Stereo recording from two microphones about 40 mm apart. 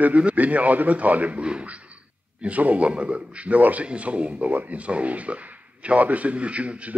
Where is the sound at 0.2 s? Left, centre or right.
Right.